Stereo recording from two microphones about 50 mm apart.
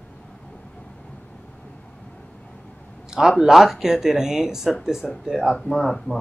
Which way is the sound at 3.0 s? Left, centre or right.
Centre.